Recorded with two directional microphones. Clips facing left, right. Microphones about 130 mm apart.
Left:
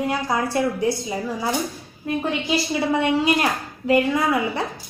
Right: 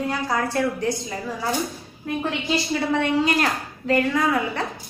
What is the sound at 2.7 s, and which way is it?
A woman's voice, 10° left (ahead or behind).